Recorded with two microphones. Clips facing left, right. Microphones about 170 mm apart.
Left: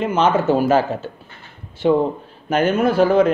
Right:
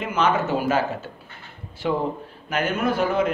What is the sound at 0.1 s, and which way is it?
A man's voice, 30° left (ahead or behind).